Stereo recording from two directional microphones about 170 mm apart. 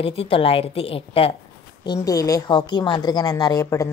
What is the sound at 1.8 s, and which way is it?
A woman's voice, 25° left (ahead or behind).